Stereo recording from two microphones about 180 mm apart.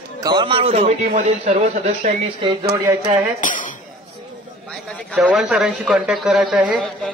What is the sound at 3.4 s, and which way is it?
Speech, 45° left (ahead or behind).